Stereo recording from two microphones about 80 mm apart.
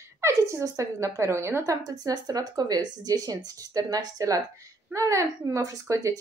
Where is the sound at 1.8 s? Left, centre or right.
Right.